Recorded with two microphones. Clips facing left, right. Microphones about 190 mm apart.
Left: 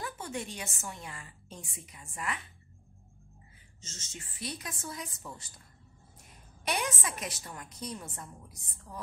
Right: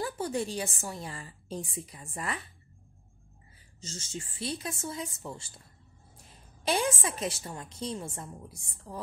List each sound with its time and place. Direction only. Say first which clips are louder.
0.0 s a woman's voice: right 7 dB; 35° right (ahead or behind)
3.8 s a woman's voice: right 8 dB; 30° right (ahead or behind)
6.6 s a woman's voice: right 5 dB; 30° right (ahead or behind)